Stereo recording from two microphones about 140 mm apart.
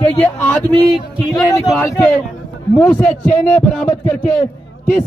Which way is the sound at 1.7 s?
15° left (ahead or behind).